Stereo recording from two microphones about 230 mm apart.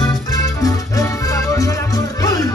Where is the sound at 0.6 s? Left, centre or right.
Centre.